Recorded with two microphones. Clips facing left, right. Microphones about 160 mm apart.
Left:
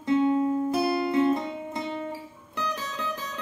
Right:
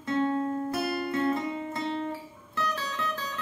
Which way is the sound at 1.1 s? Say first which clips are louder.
Left 4 dB; 20° left (ahead or behind).